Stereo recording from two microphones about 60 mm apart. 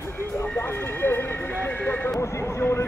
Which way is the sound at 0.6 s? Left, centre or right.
Left.